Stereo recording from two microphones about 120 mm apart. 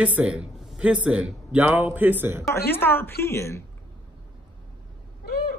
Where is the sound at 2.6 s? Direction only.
20° left (ahead or behind).